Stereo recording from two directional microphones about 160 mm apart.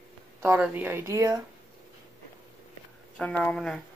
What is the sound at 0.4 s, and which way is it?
Speech, 10° right (ahead or behind).